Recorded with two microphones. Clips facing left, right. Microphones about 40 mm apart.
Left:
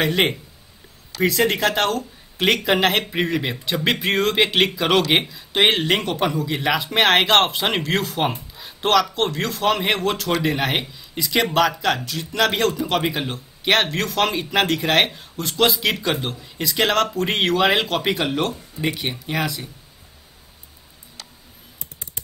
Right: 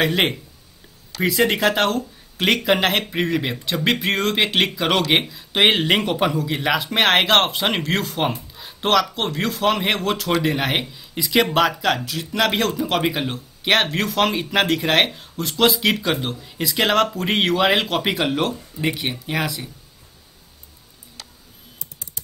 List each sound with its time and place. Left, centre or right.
0.0 s speech: centre
21.7 s computer keyboard: left